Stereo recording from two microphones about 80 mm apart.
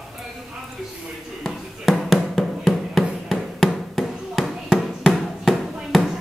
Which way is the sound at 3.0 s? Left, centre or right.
Centre.